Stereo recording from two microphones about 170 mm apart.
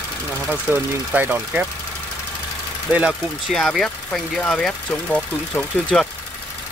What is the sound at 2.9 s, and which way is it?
Speech, 10° right (ahead or behind).